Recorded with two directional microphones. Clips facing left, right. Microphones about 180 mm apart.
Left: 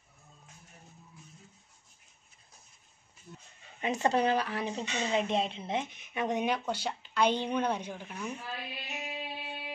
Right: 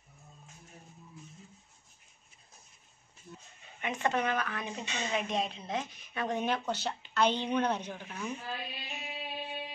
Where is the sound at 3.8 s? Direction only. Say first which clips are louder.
Left 4 dB; 35° left (ahead or behind); by 8.3 s 10° left (ahead or behind).